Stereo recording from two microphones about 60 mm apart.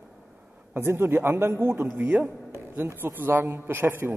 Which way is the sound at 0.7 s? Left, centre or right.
Right.